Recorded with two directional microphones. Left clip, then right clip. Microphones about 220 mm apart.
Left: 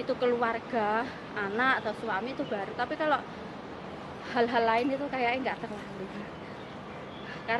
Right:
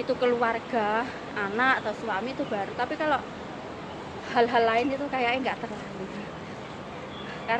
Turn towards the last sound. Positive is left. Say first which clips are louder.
# right 3 dB
turn(degrees=10)  # may be behind; listen again after turning